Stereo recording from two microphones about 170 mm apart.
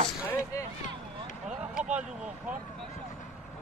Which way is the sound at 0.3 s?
20° left (ahead or behind).